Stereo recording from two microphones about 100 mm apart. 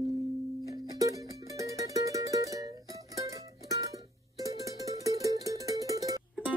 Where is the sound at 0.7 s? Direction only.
35° right (ahead or behind).